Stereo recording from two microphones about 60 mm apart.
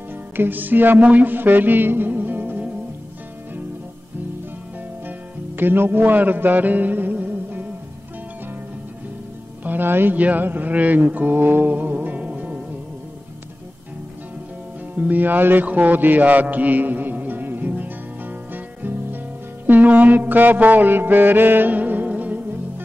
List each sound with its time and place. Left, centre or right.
0.4 s music: right
5.6 s music: right
9.7 s speech: right
15.0 s music: right